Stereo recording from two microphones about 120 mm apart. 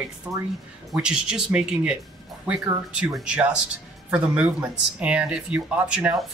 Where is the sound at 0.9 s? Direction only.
5° right (ahead or behind).